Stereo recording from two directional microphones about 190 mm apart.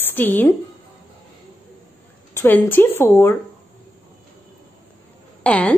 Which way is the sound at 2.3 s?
10° left (ahead or behind).